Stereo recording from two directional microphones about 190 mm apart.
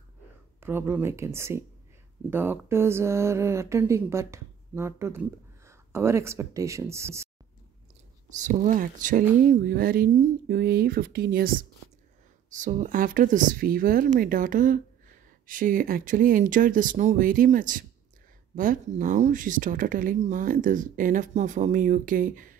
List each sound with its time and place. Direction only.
0.6 s speech: 10° right (ahead or behind)
8.3 s speech: 40° right (ahead or behind)